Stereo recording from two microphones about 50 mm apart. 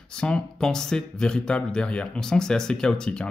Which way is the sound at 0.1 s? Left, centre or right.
Centre.